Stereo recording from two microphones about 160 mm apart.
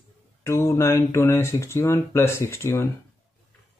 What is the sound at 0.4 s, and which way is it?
Speech, 20° left (ahead or behind).